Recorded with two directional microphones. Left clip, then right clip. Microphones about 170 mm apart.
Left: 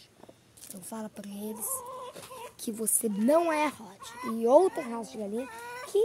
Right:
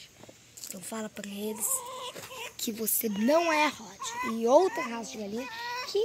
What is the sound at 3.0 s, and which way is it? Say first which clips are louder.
Speech: left 1 dB; 20° left (ahead or behind).